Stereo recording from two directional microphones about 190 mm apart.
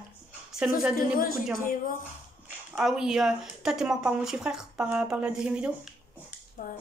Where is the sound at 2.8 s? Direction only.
5° right (ahead or behind).